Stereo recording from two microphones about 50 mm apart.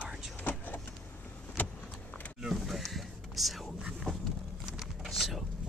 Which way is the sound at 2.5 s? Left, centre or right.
Centre.